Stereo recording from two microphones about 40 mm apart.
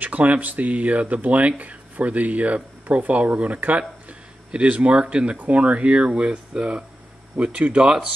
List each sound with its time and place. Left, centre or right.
0.2 s speech: right